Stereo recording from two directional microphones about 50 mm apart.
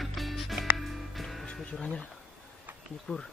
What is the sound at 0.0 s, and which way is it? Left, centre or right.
Music, centre.